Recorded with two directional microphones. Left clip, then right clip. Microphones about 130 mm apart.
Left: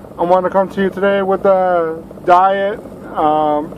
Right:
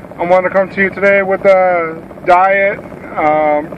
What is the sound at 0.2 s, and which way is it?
Speech, 20° right (ahead or behind).